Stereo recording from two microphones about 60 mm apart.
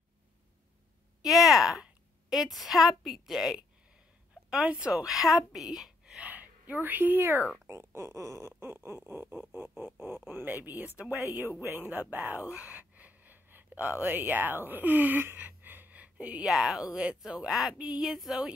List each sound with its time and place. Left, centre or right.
1.2 s a woman's voice: centre
4.5 s speech: centre
4.9 s speech: centre
6.1 s speech: right
7.6 s speech: right
8.5 s speech: right
11.2 s speech: right
16.4 s speech: centre
17.7 s a sound: centre
18.1 s speech: centre